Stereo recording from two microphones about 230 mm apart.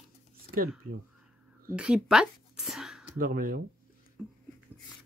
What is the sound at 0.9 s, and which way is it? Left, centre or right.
Speech, right.